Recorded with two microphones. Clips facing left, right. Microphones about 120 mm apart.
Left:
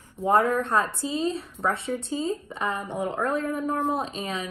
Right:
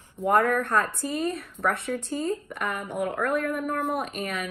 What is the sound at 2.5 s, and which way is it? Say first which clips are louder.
Speech: left 2 dB; 20° left (ahead or behind).